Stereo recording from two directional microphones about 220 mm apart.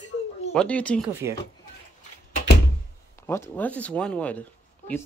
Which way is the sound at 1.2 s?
15° right (ahead or behind).